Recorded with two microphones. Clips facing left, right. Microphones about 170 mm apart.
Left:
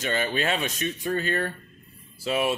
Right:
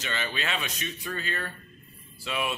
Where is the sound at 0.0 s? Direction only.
45° left (ahead or behind).